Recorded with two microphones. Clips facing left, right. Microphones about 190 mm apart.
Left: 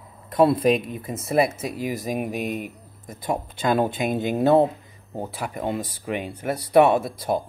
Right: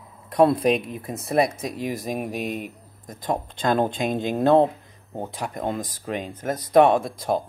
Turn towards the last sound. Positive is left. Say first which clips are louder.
# even
turn(degrees=5)  # may be behind; listen again after turning